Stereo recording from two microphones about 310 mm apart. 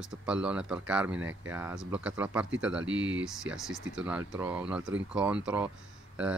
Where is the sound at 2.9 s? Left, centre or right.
Right.